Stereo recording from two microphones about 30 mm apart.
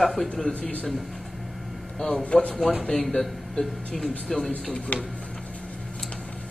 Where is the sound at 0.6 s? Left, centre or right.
Left.